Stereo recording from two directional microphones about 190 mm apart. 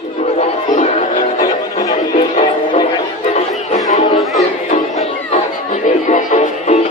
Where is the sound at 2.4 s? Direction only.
25° left (ahead or behind).